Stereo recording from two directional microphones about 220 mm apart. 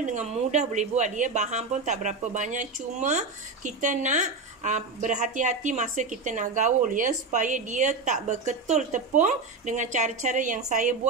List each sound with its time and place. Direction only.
0.0 s speech: 35° right (ahead or behind)